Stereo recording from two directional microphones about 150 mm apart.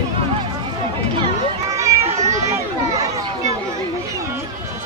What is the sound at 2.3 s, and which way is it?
Children playing, 20° right (ahead or behind).